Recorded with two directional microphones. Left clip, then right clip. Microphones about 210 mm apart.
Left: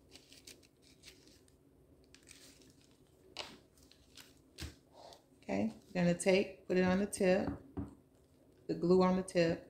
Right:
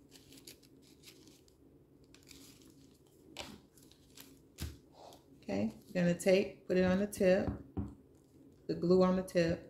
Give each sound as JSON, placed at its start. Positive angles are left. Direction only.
{"t": 5.4, "sound": "speech", "side_deg": 20}
{"t": 8.6, "sound": "speech", "side_deg": 15}